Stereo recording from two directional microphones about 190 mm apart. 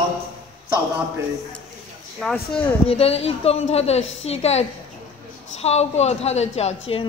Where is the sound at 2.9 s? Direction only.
30° left (ahead or behind).